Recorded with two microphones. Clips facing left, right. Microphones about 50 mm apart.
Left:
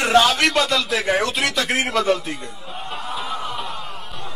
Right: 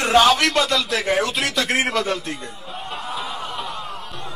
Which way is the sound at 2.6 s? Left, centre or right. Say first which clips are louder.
Even; centre.